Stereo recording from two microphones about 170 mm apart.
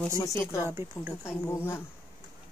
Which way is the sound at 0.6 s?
10° right (ahead or behind).